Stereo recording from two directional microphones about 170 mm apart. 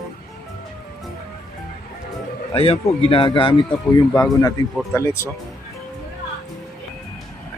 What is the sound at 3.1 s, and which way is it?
Speech, 30° left (ahead or behind).